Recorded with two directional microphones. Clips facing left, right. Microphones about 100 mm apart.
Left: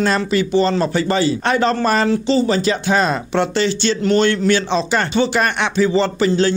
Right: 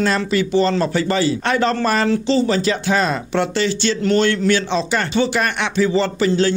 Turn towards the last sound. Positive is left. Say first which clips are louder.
# left 1 dB
turn(degrees=30)  # may be behind; listen again after turning